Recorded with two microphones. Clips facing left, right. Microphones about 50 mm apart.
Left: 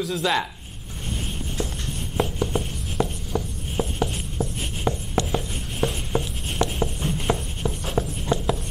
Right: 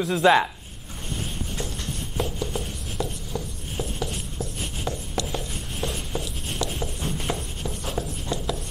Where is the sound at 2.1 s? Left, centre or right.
Left.